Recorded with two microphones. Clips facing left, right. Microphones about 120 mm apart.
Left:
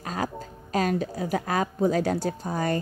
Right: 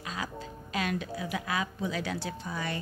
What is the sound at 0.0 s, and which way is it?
A woman's voice, 45° left (ahead or behind).